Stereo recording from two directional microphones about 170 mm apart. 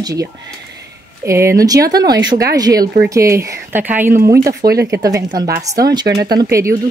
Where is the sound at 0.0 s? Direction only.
20° right (ahead or behind).